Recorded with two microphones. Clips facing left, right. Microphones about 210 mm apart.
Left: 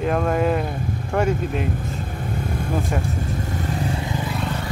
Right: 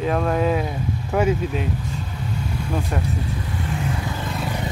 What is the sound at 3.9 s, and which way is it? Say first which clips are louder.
Vehicle: left 1 dB; 25° left (ahead or behind).